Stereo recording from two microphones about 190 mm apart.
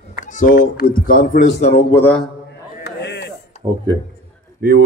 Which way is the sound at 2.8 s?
65° left (ahead or behind).